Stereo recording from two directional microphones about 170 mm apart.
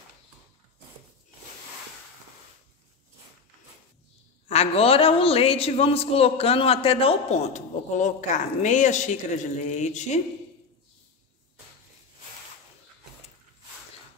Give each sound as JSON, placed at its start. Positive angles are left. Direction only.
{"t": 4.5, "sound": "a man's voice", "side_deg": 35}